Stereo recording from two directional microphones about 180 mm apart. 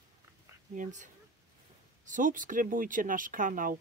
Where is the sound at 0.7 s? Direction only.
45° right (ahead or behind).